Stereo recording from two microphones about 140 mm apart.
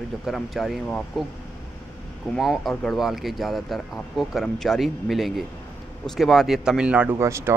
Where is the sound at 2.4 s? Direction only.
Centre (ahead or behind).